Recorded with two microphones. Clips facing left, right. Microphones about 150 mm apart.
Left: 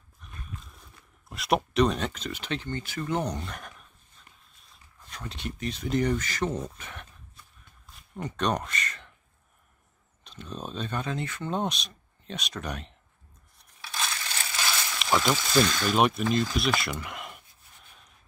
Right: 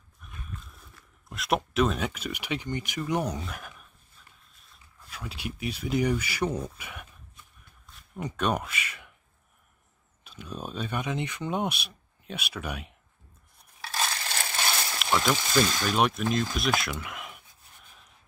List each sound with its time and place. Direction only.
0.2 s livestock: 5° right (ahead or behind)
1.3 s speech: centre (ahead or behind)
8.2 s speech: 10° right (ahead or behind)
10.2 s speech: 5° right (ahead or behind)
14.4 s a sound: 30° right (ahead or behind)
15.0 s a sound: centre (ahead or behind)
15.6 s speech: 5° right (ahead or behind)